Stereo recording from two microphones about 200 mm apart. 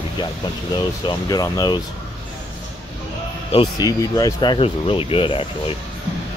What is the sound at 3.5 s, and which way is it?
Speech, 20° left (ahead or behind).